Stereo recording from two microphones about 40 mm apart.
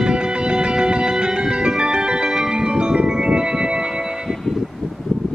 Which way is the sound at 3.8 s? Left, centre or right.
Centre.